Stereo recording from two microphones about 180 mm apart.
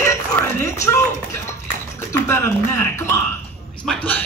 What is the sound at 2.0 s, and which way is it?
A woman's voice, 15° left (ahead or behind).